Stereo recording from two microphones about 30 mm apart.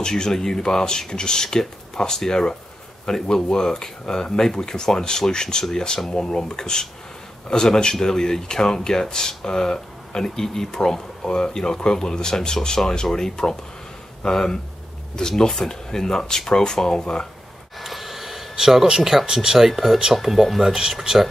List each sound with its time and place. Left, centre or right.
0.0 s speech: centre
3.2 s speech: centre
3.4 s speech: left
17.7 s a sound: centre
18.9 s speech: centre
19.7 s speech: centre
20.6 s speech: centre